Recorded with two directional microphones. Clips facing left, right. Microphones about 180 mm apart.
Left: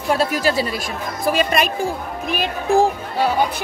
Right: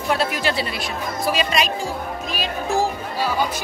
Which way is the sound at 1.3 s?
55° left (ahead or behind).